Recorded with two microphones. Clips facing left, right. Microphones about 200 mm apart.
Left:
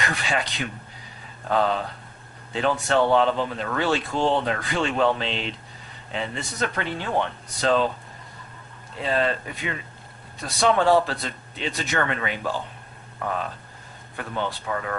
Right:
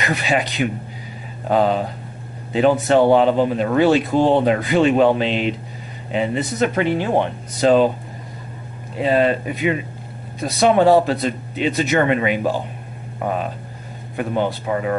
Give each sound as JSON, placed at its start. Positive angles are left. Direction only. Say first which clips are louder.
{"t": 0.0, "sound": "speech", "louder": "right 6 dB", "side_deg": -20}
{"t": 8.9, "sound": "speech", "louder": "right 7 dB", "side_deg": -15}
{"t": 14.7, "sound": "speech", "louder": "right 8 dB", "side_deg": -20}